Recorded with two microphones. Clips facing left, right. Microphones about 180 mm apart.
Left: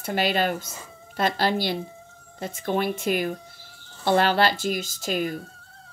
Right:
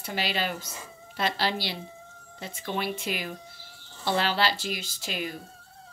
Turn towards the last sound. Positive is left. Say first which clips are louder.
# left 7 dB
turn(degrees=45)  # may be behind; listen again after turning